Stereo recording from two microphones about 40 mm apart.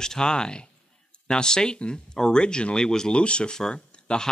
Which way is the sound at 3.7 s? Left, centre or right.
Left.